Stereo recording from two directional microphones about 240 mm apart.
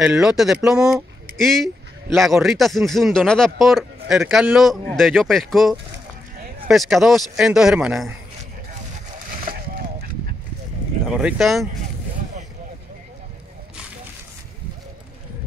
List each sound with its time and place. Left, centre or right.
0.0 s speech: centre
9.4 s a sound: right
11.1 s speech: centre